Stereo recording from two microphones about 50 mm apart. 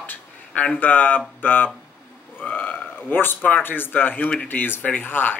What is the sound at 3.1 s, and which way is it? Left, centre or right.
Speech, left.